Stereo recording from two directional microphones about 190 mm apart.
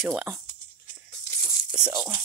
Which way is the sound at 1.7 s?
5° right (ahead or behind).